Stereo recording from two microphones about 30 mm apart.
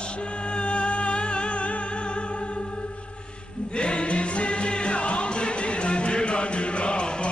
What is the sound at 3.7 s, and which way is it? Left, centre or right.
Music, left.